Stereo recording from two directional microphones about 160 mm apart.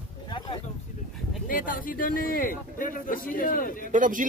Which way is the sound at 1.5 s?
60° left (ahead or behind).